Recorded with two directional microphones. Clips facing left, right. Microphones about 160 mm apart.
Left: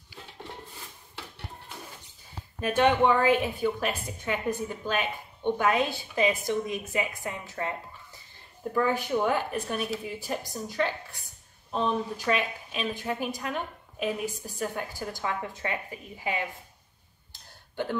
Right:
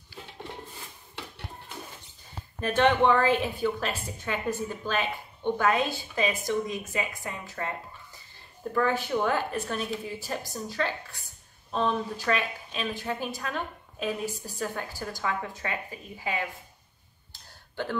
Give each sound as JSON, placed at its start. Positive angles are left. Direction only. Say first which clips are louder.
{"t": 2.6, "sound": "a woman's voice", "louder": "even", "side_deg": 10}
{"t": 8.7, "sound": "a woman's voice", "louder": "even", "side_deg": 15}
{"t": 17.3, "sound": "a sound", "louder": "even", "side_deg": 20}